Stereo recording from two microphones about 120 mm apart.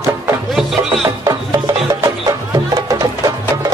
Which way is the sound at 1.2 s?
30° right (ahead or behind).